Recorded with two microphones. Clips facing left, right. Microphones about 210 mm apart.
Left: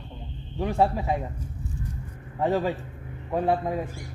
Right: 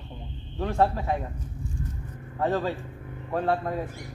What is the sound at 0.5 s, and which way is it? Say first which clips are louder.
A man's voice: left 1 dB; 15° left (ahead or behind).